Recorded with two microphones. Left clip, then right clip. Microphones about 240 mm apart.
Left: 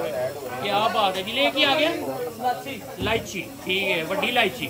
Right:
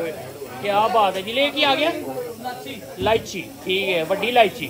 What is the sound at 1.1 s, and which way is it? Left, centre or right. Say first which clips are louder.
Speech: right 1 dB; centre.